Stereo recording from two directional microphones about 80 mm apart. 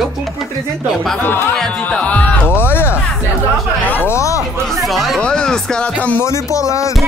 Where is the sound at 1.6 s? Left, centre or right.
Centre.